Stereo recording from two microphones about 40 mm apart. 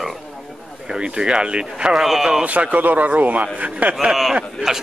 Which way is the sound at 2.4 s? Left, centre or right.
Right.